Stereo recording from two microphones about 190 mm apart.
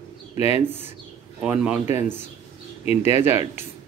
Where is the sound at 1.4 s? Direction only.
5° right (ahead or behind).